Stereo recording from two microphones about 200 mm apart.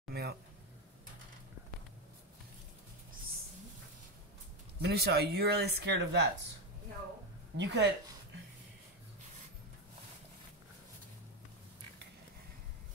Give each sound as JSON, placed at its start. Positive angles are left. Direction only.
{"t": 0.1, "sound": "a sound", "side_deg": -50}
{"t": 4.8, "sound": "speech", "side_deg": -55}
{"t": 7.5, "sound": "speech", "side_deg": -60}